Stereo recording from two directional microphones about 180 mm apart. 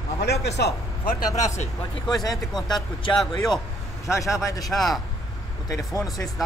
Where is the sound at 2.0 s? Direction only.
20° left (ahead or behind).